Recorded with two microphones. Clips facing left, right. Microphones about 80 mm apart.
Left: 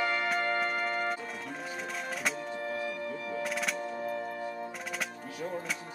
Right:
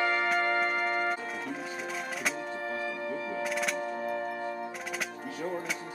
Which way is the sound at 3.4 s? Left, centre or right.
Centre.